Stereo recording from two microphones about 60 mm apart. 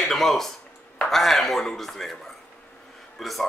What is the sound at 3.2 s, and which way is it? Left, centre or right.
Speech, centre.